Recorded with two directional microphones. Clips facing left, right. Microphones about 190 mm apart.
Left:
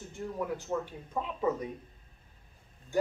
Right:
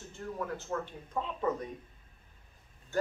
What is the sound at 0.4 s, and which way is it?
Speech, 10° left (ahead or behind).